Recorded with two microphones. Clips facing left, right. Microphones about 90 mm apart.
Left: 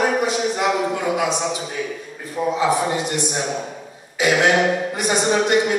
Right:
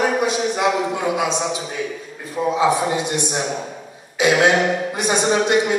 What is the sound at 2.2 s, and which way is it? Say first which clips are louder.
A man's voice: right 2 dB; 20° right (ahead or behind).